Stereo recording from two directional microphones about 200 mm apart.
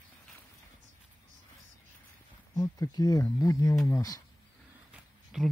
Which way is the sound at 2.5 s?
15° left (ahead or behind).